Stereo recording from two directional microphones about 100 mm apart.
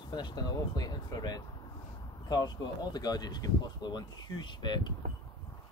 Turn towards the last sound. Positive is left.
turn(degrees=50)  # may be behind; listen again after turning